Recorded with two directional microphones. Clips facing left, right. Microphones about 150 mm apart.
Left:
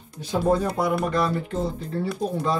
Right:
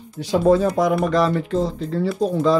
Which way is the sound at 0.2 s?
90° right.